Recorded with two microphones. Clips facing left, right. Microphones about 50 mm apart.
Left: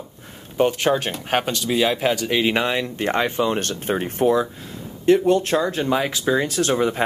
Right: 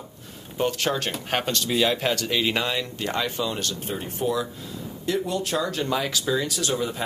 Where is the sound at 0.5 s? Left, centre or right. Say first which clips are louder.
Left 6 dB; left.